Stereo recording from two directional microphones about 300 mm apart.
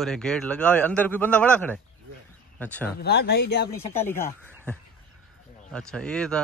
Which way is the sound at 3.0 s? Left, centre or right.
Left.